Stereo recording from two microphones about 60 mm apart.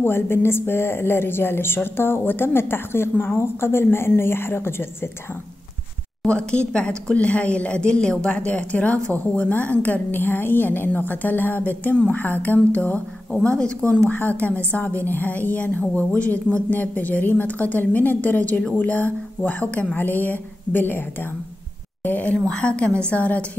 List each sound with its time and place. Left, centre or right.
0.0 s speech: left
6.2 s a woman's voice: centre
13.3 s a woman's voice: centre
22.5 s a woman's voice: centre